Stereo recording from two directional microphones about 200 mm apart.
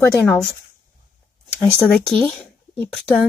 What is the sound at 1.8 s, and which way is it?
Speech, 5° left (ahead or behind).